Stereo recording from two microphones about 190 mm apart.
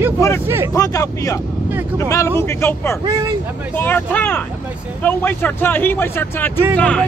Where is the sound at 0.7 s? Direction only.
20° left (ahead or behind).